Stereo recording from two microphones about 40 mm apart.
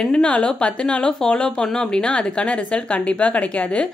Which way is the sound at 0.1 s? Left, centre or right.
Left.